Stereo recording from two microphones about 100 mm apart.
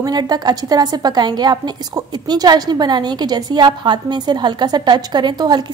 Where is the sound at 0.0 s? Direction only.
40° right (ahead or behind).